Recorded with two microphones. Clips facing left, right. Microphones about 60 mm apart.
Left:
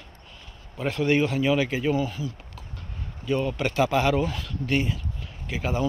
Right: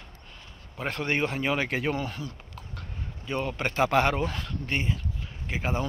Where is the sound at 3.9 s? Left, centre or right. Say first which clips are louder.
Left 1 dB; right.